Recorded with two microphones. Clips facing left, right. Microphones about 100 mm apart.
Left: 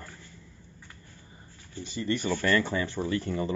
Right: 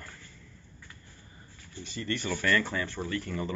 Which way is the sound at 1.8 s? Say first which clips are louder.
Left 4 dB; 20° left (ahead or behind).